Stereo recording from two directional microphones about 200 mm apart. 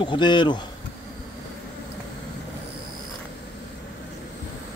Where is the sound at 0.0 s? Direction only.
25° left (ahead or behind).